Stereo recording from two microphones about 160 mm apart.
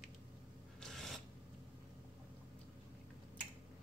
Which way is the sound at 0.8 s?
Centre (ahead or behind).